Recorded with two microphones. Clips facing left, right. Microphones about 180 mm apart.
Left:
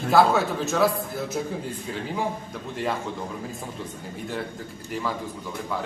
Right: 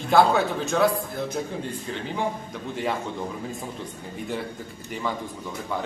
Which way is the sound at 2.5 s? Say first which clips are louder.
Even; centre (ahead or behind).